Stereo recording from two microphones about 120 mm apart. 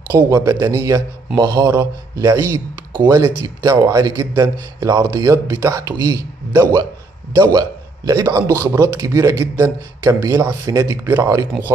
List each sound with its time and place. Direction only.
0.1 s a man's voice: 25° right (ahead or behind)